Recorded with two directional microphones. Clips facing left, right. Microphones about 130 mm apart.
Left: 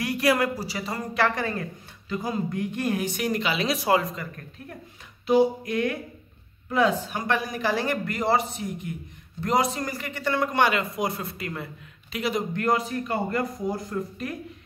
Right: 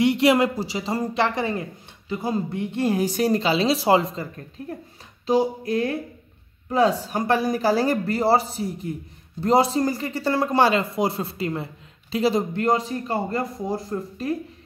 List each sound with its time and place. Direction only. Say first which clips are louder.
0.0 s speech: right 5 dB; 25° right (ahead or behind)